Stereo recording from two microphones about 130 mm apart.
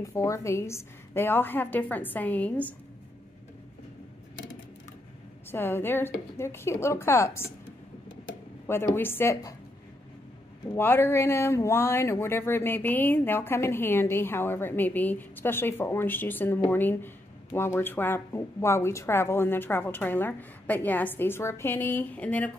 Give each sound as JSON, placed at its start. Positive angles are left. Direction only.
{"t": 0.0, "sound": "speech", "side_deg": 25}
{"t": 5.5, "sound": "speech", "side_deg": 15}
{"t": 8.9, "sound": "speech", "side_deg": 15}
{"t": 10.8, "sound": "speech", "side_deg": 15}